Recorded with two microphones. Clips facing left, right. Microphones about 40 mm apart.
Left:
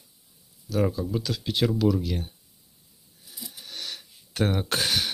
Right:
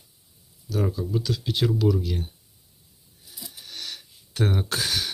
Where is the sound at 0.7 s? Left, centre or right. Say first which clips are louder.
Left 1 dB; left.